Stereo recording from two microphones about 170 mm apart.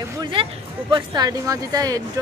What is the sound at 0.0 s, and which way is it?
Speech, 25° right (ahead or behind).